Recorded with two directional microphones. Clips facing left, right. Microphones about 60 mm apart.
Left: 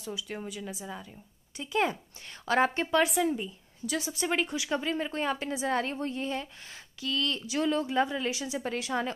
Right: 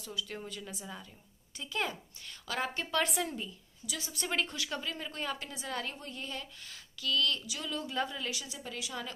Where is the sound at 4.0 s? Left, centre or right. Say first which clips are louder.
Left 5 dB; centre.